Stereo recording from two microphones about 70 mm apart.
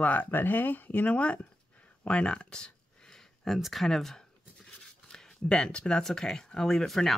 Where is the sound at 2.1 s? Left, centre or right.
Centre.